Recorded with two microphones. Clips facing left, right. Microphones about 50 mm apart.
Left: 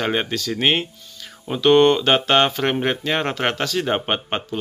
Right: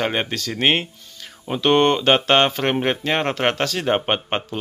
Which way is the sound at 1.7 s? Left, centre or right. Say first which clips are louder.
Left 1 dB; centre.